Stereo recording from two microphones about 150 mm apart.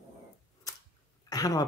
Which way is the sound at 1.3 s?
25° left (ahead or behind).